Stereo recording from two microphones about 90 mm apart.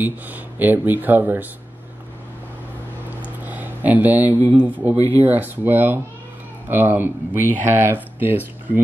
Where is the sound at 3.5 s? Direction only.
20° right (ahead or behind).